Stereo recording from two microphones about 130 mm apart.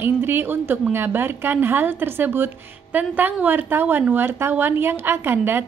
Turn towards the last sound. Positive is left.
turn(degrees=-15)  # may be behind; listen again after turning